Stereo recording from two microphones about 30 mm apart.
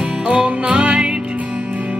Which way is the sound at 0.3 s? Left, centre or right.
Right.